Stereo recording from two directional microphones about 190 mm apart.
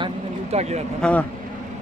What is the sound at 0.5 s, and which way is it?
Speech, 35° right (ahead or behind).